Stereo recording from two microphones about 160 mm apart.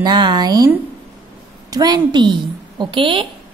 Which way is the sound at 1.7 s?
25° right (ahead or behind).